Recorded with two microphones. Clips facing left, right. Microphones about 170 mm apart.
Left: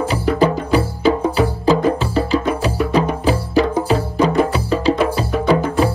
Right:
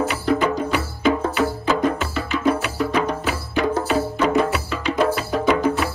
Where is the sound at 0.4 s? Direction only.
35° left (ahead or behind).